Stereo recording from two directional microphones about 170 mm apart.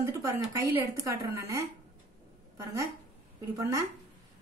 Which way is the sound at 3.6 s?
20° right (ahead or behind).